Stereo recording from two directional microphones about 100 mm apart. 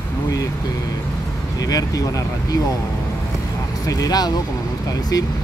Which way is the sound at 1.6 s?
40° left (ahead or behind).